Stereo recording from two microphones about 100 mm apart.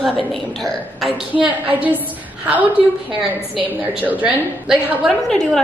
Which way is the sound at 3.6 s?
15° right (ahead or behind).